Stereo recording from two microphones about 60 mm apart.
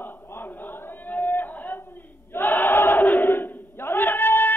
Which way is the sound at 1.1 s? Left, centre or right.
Left.